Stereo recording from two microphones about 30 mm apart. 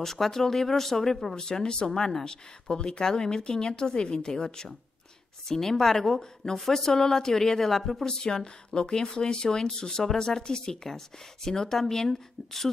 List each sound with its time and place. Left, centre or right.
0.0 s speech: centre
1.3 s speech: left
1.9 s speech: centre
5.5 s speech: centre
8.0 s speech: centre